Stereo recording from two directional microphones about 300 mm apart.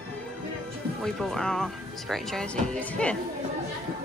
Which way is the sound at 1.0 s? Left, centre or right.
Centre.